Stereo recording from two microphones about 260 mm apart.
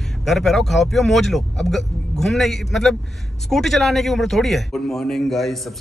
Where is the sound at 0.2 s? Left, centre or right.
Centre.